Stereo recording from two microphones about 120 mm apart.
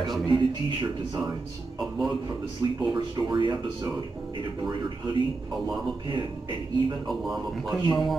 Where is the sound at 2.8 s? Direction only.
40° right (ahead or behind).